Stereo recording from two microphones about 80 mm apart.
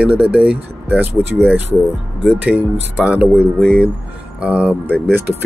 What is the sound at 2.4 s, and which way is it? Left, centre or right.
Speech, centre.